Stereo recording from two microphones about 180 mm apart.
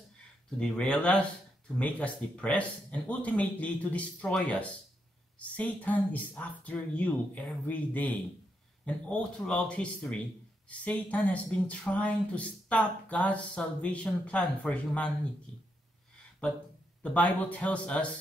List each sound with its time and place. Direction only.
0.6 s speech: 5° left (ahead or behind)
17.0 s speech: 10° left (ahead or behind)